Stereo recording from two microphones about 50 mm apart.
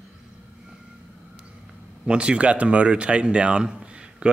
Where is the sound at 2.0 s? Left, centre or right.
Right.